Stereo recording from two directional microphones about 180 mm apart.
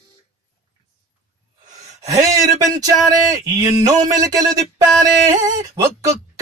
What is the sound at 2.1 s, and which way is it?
Speech, 20° right (ahead or behind).